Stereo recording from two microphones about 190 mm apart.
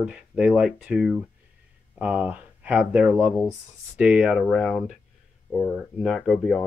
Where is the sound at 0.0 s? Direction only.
5° right (ahead or behind).